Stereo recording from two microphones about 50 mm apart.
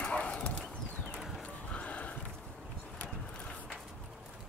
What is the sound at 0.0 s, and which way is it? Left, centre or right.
Clip-clop, left.